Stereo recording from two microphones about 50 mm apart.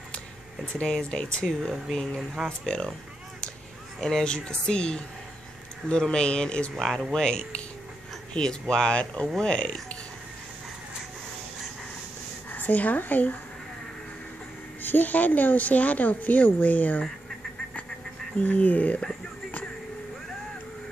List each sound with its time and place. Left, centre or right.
0.7 s speech: centre
4.0 s speech: centre
6.9 s speech: centre
7.2 s speech: centre
12.4 s speech: left
14.8 s speech: left
18.4 s speech: left